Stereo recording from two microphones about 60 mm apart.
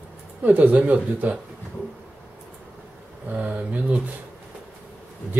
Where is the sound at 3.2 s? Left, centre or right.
Right.